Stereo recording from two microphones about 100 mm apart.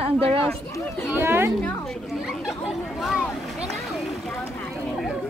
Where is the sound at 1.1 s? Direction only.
25° right (ahead or behind).